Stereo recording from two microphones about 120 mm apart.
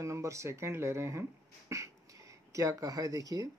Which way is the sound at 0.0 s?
25° right (ahead or behind).